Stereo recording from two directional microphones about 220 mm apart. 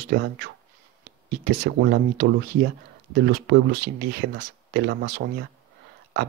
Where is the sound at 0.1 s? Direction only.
50° right (ahead or behind).